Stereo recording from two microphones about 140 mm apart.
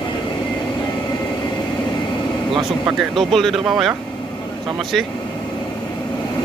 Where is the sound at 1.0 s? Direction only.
35° left (ahead or behind).